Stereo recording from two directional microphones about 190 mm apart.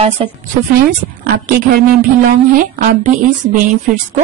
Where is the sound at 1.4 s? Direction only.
50° right (ahead or behind).